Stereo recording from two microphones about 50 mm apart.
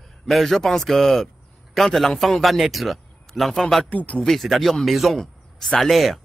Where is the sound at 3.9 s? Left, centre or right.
Left.